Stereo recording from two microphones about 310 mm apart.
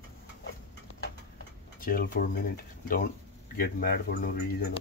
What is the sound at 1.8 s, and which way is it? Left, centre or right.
Speech, left.